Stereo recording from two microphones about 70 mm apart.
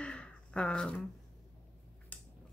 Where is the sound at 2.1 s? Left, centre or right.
Left.